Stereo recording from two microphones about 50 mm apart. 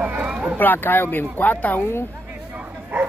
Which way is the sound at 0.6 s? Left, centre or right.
Left.